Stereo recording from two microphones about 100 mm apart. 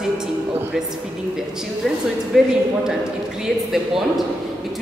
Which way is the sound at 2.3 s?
5° right (ahead or behind).